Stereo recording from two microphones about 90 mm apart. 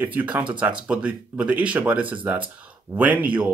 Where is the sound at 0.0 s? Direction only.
20° right (ahead or behind).